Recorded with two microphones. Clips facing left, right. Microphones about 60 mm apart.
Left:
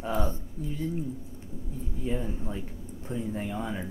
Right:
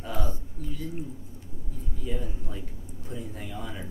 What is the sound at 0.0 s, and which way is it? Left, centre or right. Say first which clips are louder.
Speech: left 4 dB; left.